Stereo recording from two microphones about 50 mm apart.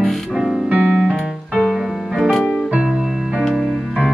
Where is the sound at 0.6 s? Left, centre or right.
Right.